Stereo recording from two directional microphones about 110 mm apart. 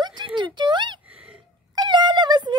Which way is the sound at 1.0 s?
10° right (ahead or behind).